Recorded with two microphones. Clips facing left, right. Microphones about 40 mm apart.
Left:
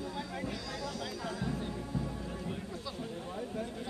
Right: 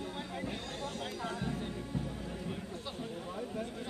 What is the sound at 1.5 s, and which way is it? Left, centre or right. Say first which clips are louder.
Music: left 1 dB; right.